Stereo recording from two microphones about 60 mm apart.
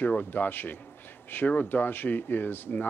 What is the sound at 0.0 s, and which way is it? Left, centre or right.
Speech, left.